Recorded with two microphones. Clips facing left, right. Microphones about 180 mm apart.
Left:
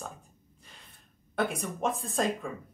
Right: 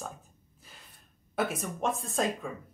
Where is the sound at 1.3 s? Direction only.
5° right (ahead or behind).